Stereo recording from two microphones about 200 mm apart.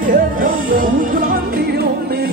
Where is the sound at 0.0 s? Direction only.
45° right (ahead or behind).